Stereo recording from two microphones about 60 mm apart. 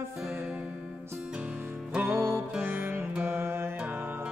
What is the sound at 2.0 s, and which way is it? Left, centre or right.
Music, right.